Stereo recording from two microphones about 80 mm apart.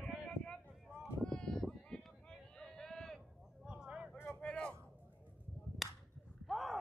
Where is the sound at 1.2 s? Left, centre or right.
Centre.